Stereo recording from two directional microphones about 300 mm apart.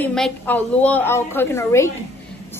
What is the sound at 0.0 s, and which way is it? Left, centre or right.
A woman's voice, centre.